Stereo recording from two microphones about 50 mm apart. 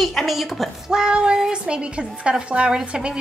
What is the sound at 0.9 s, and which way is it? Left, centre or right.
Speech, centre.